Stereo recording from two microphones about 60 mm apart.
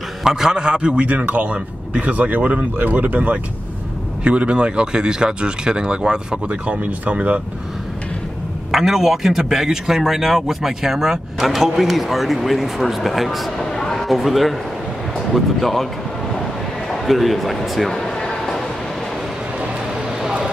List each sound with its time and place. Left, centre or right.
0.2 s a man's voice: centre
8.7 s a man's voice: centre
13.7 s a sound: centre
14.0 s a man's voice: centre
16.9 s a sound: centre
20.2 s vehicle: centre